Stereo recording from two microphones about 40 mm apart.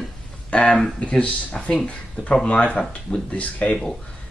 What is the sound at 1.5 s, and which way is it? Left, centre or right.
Speech, centre.